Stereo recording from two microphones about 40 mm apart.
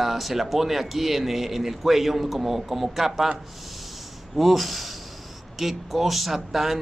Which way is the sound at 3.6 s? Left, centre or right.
Centre.